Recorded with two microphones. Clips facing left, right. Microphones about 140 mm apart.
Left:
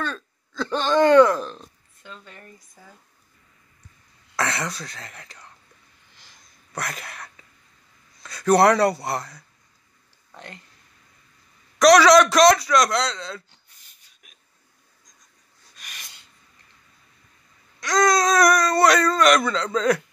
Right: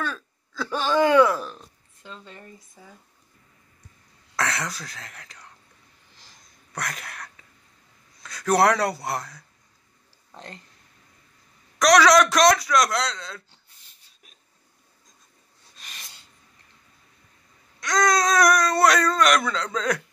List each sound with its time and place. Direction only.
0.0 s speech: 5° right (ahead or behind)
2.0 s speech: 25° right (ahead or behind)
2.7 s speech: centre (ahead or behind)
4.4 s speech: centre (ahead or behind)
6.7 s speech: centre (ahead or behind)
10.3 s speech: 30° right (ahead or behind)
11.8 s speech: centre (ahead or behind)
13.5 s a sound: 30° right (ahead or behind)
15.7 s a sound: 30° right (ahead or behind)
17.7 s speech: centre (ahead or behind)